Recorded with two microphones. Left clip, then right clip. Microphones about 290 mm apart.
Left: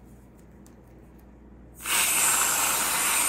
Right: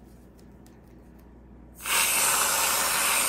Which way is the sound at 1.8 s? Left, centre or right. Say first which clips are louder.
Even; centre.